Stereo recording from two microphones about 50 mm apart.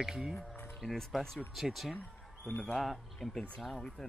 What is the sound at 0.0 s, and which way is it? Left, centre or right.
Speech, centre.